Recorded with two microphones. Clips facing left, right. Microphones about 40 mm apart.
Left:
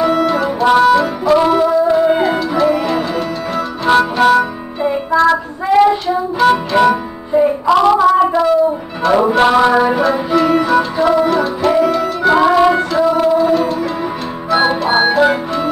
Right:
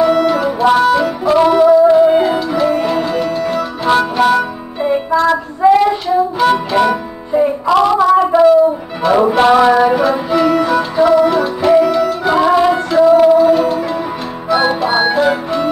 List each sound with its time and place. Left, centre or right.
0.0 s music: centre
4.3 s music: centre
5.1 s child singing: centre
6.4 s music: centre
9.0 s music: centre